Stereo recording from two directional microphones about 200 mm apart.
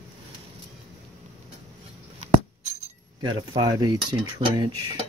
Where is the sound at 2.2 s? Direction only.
35° right (ahead or behind).